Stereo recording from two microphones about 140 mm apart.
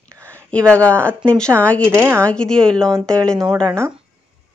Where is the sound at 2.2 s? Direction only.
5° left (ahead or behind).